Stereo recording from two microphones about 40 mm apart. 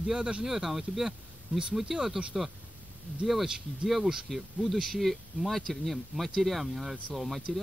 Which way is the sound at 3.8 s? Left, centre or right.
Centre.